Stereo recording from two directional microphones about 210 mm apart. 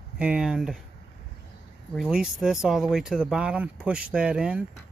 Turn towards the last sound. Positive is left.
turn(degrees=-5)  # may be behind; listen again after turning